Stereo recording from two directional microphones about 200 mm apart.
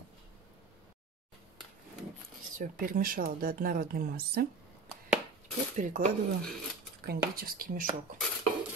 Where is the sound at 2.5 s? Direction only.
45° right (ahead or behind).